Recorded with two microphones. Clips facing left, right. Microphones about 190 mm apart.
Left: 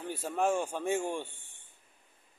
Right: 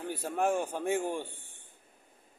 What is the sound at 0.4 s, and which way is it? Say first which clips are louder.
Speech: even; 15° right (ahead or behind).